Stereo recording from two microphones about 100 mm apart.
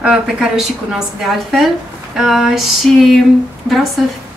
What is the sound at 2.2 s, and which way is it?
Speech, 5° right (ahead or behind).